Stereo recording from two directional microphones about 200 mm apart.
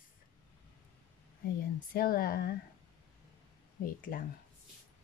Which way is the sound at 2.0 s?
50° left (ahead or behind).